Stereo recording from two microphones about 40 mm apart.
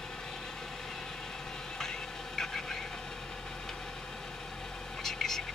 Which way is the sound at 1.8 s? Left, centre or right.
Centre.